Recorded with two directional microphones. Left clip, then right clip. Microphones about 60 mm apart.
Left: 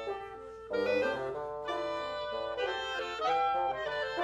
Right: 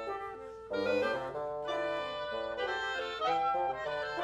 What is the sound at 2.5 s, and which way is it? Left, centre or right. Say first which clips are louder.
Music: even; right.